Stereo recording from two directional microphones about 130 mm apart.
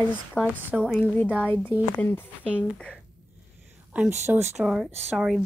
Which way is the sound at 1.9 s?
15° left (ahead or behind).